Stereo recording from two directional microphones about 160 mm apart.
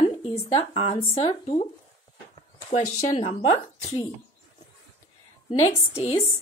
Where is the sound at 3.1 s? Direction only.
35° left (ahead or behind).